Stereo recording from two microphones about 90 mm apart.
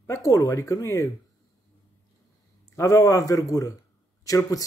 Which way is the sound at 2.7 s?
35° left (ahead or behind).